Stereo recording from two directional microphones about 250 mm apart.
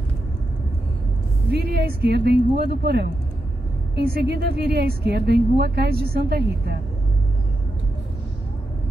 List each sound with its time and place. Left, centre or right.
1.5 s a woman's voice: right